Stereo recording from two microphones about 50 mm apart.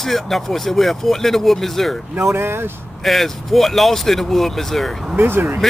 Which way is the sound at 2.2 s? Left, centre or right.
Right.